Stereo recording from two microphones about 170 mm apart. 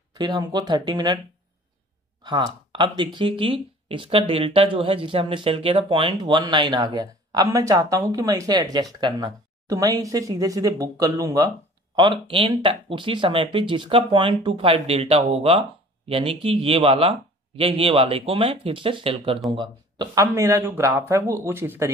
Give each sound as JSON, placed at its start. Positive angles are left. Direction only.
{"t": 0.1, "sound": "speech", "side_deg": -25}
{"t": 2.2, "sound": "speech", "side_deg": -25}